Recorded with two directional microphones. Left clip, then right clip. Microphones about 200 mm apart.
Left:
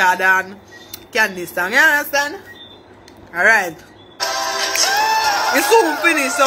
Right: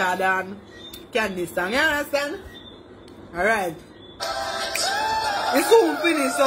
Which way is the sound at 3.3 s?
5° right (ahead or behind).